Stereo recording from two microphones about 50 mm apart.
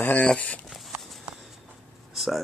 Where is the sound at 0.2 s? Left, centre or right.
Left.